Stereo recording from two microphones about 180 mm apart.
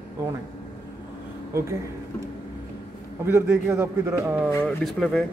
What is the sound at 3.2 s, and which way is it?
A man's voice, 15° right (ahead or behind).